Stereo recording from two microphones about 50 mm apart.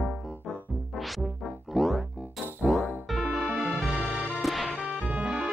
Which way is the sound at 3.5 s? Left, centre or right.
Centre.